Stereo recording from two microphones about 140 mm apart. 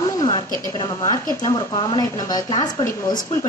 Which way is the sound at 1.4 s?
35° left (ahead or behind).